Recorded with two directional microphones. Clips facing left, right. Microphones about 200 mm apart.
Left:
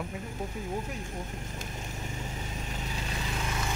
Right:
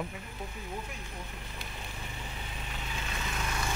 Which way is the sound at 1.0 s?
45° left (ahead or behind).